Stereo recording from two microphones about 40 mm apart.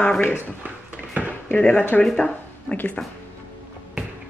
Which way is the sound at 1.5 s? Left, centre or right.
Left.